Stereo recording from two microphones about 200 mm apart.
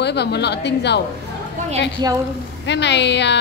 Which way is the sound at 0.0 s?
55° left (ahead or behind).